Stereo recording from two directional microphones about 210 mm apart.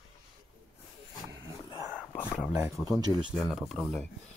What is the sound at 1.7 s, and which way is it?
Whispering, 15° right (ahead or behind).